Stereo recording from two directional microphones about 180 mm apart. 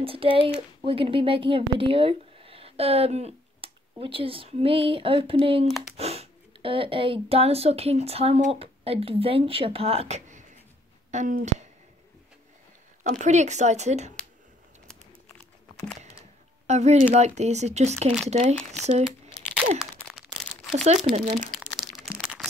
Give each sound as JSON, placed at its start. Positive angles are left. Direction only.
{"t": 0.0, "sound": "speech", "side_deg": -30}
{"t": 5.7, "sound": "speech", "side_deg": 0}
{"t": 5.9, "sound": "speech", "side_deg": -35}
{"t": 13.2, "sound": "speech", "side_deg": -40}
{"t": 16.0, "sound": "speech", "side_deg": -35}
{"t": 19.8, "sound": "a sound", "side_deg": 0}
{"t": 20.7, "sound": "speech", "side_deg": -40}
{"t": 21.5, "sound": "crushing", "side_deg": 0}